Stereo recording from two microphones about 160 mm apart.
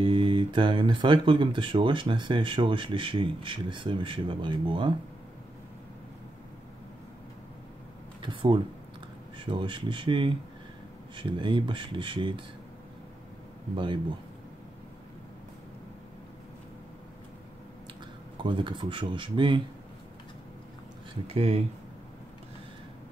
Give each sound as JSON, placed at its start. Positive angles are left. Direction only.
{"t": 0.0, "sound": "speech", "side_deg": -30}
{"t": 8.2, "sound": "speech", "side_deg": -30}
{"t": 18.4, "sound": "speech", "side_deg": -30}
{"t": 21.3, "sound": "speech", "side_deg": -35}